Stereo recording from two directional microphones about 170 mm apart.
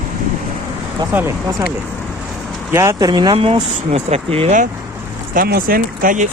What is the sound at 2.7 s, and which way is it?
Speech, 15° right (ahead or behind).